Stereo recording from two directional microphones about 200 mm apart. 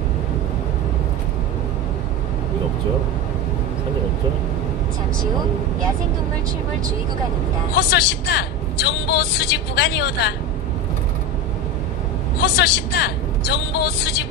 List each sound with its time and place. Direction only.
7.7 s a woman's voice: 55° left (ahead or behind)
12.4 s speech: 50° left (ahead or behind)